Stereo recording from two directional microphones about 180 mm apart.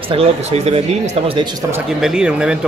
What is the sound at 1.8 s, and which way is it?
Speech, 5° right (ahead or behind).